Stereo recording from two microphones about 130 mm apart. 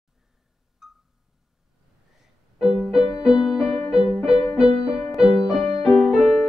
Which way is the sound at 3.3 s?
5° right (ahead or behind).